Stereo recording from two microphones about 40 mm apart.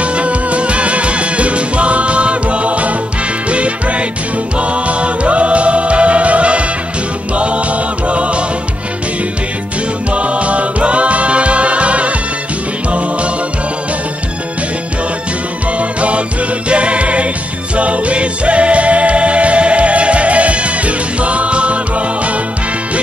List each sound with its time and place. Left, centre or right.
0.0 s music: right
10.1 s music: right
15.8 s music: right